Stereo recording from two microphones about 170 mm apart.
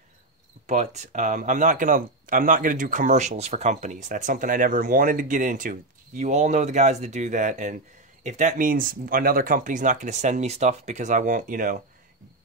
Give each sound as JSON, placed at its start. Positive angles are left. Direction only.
{"t": 0.7, "sound": "speech", "side_deg": -45}